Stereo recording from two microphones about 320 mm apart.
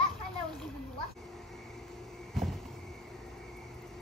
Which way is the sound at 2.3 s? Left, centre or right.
Centre.